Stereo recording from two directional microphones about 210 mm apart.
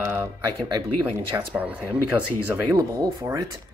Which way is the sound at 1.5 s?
5° right (ahead or behind).